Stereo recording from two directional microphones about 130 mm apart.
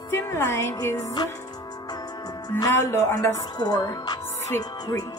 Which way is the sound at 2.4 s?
30° left (ahead or behind).